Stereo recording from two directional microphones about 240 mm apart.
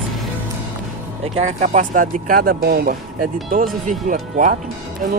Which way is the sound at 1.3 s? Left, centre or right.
Right.